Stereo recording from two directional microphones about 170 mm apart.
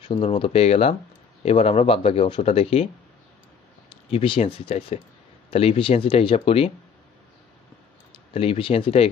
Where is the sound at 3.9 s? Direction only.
35° left (ahead or behind).